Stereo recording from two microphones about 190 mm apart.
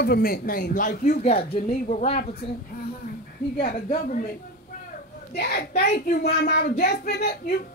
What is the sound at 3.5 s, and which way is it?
Speech, 55° left (ahead or behind).